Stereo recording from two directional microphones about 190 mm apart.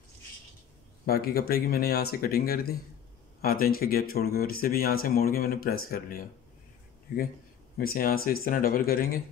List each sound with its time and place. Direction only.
1.0 s speech: 55° left (ahead or behind)
7.7 s speech: 50° left (ahead or behind)